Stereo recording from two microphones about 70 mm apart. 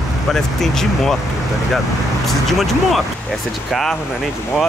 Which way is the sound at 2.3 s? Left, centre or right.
Centre.